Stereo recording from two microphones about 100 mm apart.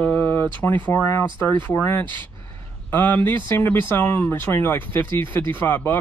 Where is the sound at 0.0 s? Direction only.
15° left (ahead or behind).